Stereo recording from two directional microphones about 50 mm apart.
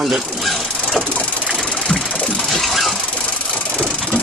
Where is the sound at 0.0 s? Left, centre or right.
Centre.